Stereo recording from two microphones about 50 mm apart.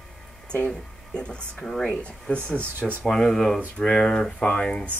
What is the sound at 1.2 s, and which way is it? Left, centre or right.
Speech, centre.